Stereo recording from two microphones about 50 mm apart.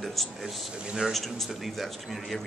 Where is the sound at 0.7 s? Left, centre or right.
Centre.